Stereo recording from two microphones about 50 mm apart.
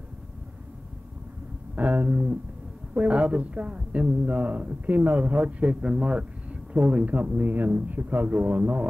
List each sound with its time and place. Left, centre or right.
1.8 s speech: right